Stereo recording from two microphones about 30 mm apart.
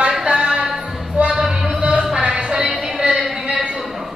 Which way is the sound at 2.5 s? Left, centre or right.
Right.